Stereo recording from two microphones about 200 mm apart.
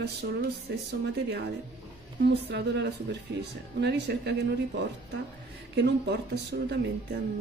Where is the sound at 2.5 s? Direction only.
55° right (ahead or behind).